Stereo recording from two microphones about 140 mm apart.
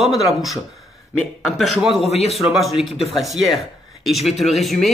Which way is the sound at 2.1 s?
50° left (ahead or behind).